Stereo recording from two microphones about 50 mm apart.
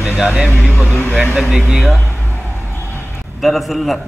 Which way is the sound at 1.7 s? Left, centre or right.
Centre.